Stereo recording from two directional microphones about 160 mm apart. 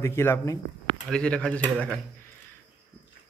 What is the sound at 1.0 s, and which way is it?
Speech, 5° left (ahead or behind).